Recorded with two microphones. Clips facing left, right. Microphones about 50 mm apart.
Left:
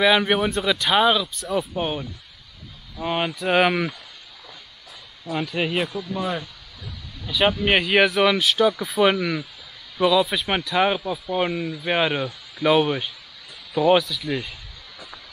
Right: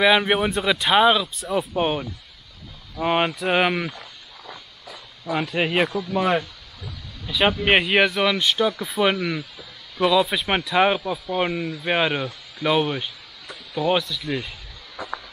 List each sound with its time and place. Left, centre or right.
0.0 s speech: centre
1.7 s speech: centre
3.4 s speech: centre
5.5 s speech: centre
7.2 s speech: centre
7.9 s speech: centre